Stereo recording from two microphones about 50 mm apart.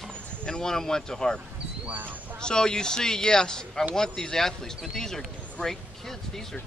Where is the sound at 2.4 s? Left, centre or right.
Centre.